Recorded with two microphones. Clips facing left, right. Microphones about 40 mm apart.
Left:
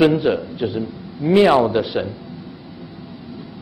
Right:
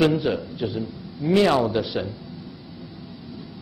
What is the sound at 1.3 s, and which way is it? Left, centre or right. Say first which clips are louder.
Speech: left 5 dB; left.